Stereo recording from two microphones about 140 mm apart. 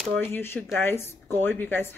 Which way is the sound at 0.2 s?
15° left (ahead or behind).